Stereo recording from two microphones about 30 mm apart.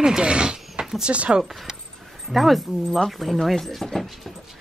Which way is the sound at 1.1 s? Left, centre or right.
Right.